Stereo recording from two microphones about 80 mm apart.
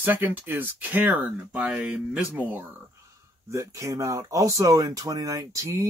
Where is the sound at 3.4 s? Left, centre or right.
Right.